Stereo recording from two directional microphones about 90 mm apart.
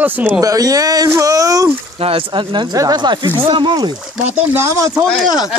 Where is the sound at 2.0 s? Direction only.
75° right (ahead or behind); by 3.9 s 55° right (ahead or behind).